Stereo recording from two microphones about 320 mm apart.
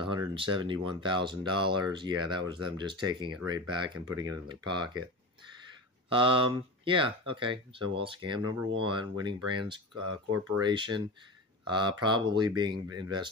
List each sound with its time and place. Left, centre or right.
0.0 s speech: centre
6.0 s speech: centre